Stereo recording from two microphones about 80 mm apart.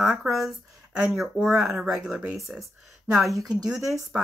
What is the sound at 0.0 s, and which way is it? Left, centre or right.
Speech, centre.